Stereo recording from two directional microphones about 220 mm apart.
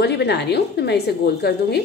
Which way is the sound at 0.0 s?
50° left (ahead or behind).